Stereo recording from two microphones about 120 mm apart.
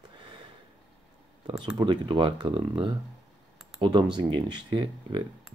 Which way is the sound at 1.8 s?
40° right (ahead or behind).